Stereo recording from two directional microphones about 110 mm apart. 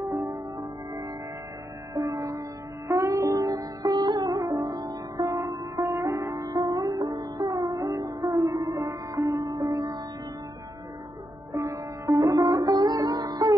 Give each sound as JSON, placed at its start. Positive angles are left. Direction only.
{"t": 0.3, "sound": "music", "side_deg": -35}
{"t": 2.0, "sound": "sitar", "side_deg": -35}
{"t": 2.9, "sound": "music", "side_deg": -30}
{"t": 11.5, "sound": "music", "side_deg": -30}